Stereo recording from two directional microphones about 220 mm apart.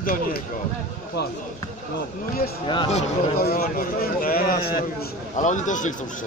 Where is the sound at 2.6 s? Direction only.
20° left (ahead or behind).